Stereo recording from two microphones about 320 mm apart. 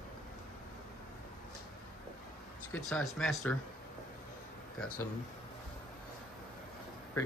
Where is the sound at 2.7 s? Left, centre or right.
Centre.